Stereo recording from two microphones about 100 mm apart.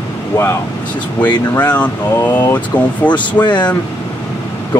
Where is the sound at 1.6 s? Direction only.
15° left (ahead or behind).